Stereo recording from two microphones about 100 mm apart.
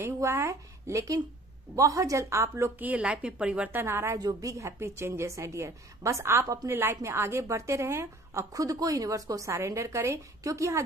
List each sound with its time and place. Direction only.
0.0 s a woman's voice: 30° right (ahead or behind)
2.8 s a woman's voice: 15° right (ahead or behind)
3.8 s a woman's voice: 25° right (ahead or behind)